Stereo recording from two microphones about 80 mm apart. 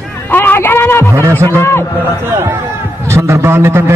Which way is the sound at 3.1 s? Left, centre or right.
Right.